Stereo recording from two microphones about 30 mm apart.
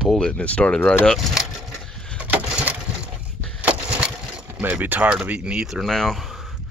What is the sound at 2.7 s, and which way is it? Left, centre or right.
Crushing, right.